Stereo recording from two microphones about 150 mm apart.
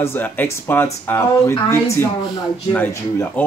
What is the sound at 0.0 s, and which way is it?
Speech, 15° left (ahead or behind).